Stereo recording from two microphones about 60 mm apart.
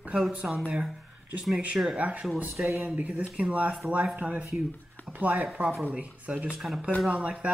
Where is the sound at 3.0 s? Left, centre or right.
Right.